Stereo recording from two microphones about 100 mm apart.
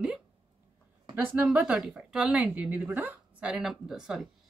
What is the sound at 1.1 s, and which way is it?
A woman's voice, 10° right (ahead or behind).